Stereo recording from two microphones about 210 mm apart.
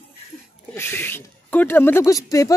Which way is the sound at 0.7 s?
10° left (ahead or behind).